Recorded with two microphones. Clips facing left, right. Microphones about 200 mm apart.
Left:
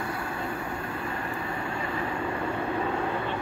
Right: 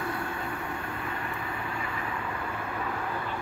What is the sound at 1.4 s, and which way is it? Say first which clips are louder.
Vehicle: left 3 dB; 30° left (ahead or behind).